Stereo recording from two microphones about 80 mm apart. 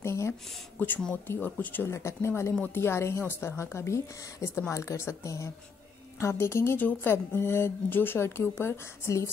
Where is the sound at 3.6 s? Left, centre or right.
Left.